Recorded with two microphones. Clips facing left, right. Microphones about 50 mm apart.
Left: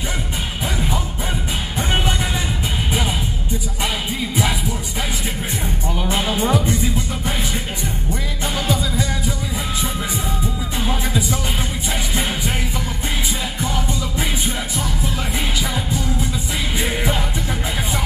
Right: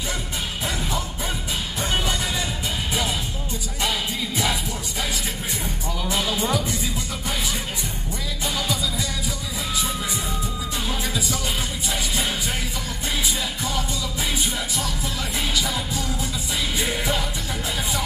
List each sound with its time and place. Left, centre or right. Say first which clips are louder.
1.8 s music: left 4 dB; left
5.9 s music: left 3 dB; left
8.5 s music: left 6 dB; left
10.8 s music: left 6 dB; left
15.5 s music: left 3 dB; left